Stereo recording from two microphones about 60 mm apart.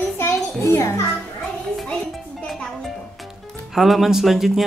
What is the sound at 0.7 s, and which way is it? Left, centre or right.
Speech, left.